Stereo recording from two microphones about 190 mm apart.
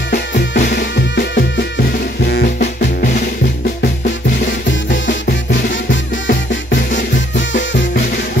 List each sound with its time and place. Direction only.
0.6 s music: 55° left (ahead or behind)
2.2 s drum: 55° left (ahead or behind)
6.2 s music: 75° left (ahead or behind)